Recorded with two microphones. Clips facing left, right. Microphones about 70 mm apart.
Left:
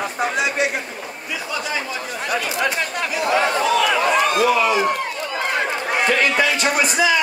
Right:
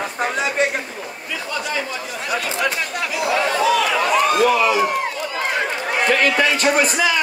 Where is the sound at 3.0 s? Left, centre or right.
Left.